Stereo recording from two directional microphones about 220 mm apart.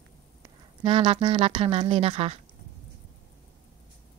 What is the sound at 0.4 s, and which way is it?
Speech, 25° right (ahead or behind).